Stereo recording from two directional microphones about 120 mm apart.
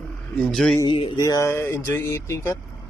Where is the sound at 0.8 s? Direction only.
45° left (ahead or behind).